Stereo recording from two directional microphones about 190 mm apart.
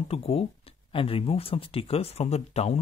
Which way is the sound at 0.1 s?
30° left (ahead or behind).